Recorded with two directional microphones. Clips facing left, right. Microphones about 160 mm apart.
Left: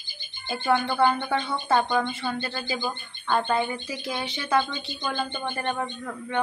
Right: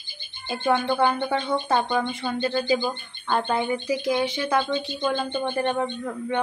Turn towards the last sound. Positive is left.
turn(degrees=-15)  # may be behind; listen again after turning